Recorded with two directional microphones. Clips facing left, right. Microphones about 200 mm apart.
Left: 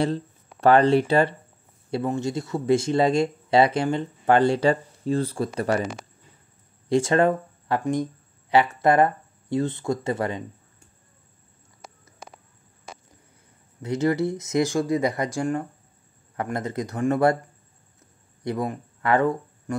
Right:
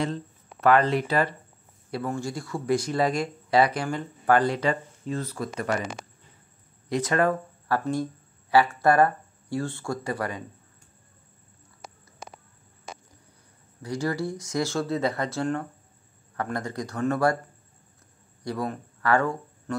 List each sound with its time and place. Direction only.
0.0 s speech: 30° left (ahead or behind)
6.9 s speech: 25° left (ahead or behind)
13.8 s speech: 20° left (ahead or behind)
18.4 s speech: 20° left (ahead or behind)